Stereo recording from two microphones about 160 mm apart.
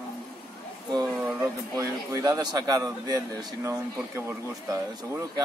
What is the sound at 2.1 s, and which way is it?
Speech, 20° right (ahead or behind).